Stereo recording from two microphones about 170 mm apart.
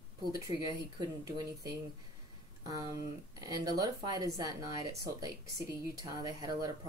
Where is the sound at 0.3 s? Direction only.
20° right (ahead or behind).